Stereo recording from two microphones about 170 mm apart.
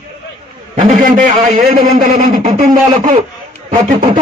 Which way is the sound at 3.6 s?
30° right (ahead or behind).